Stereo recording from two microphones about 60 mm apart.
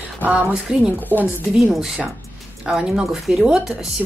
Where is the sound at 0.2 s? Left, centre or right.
Right.